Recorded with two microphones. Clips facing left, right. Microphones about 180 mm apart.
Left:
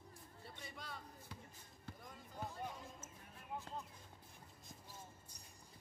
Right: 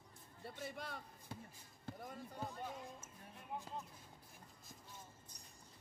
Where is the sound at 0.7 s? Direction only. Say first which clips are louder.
Right 3 dB; 55° right (ahead or behind).